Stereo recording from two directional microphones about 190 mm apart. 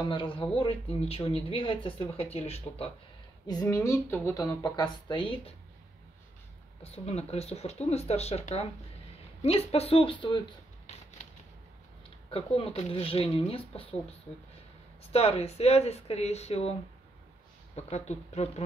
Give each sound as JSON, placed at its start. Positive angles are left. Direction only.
{"t": 0.1, "sound": "speech", "side_deg": 25}
{"t": 3.4, "sound": "speech", "side_deg": 20}
{"t": 6.8, "sound": "speech", "side_deg": 35}
{"t": 12.3, "sound": "speech", "side_deg": 30}
{"t": 15.1, "sound": "speech", "side_deg": 35}
{"t": 17.7, "sound": "speech", "side_deg": 35}